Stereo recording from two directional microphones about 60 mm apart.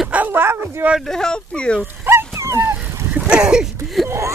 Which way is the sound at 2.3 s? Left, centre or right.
Right.